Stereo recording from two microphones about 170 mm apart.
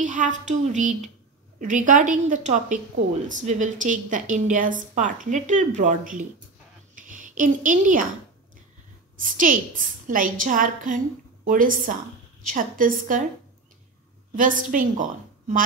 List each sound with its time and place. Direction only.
0.0 s a woman's voice: 45° right (ahead or behind)
9.2 s a woman's voice: 50° right (ahead or behind)
14.3 s a woman's voice: 50° right (ahead or behind)